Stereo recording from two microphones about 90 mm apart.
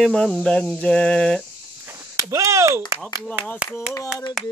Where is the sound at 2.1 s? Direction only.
35° right (ahead or behind).